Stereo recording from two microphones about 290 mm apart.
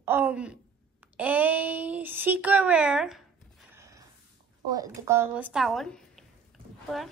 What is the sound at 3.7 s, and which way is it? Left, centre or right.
Gasp, centre.